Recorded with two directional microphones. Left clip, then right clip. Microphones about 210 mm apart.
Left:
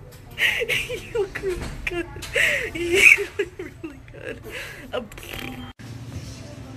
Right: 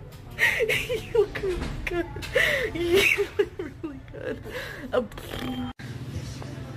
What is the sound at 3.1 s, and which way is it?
Rodents, 15° right (ahead or behind).